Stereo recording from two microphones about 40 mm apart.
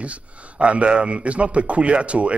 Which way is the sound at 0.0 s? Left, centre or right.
Right.